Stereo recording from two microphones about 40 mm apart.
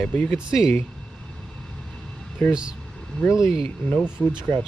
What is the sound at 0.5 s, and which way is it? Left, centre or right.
Speech, centre.